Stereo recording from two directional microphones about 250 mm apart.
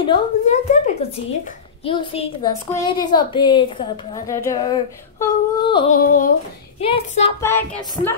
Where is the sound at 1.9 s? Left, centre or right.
Centre.